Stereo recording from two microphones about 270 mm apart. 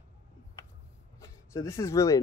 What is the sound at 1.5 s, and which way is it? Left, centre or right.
Speech, centre.